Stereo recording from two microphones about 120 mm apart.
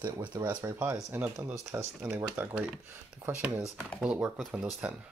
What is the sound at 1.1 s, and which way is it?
Speech, 15° right (ahead or behind).